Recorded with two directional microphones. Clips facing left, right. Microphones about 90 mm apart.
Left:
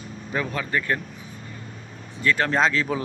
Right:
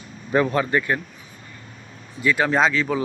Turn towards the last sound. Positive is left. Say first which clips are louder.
# right 2 dB
turn(degrees=0)  # may be behind; listen again after turning